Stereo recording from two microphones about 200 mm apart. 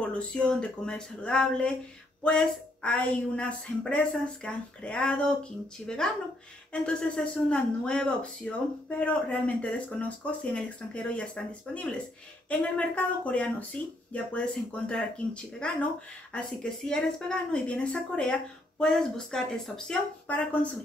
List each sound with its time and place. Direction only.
0.0 s speech: 5° left (ahead or behind)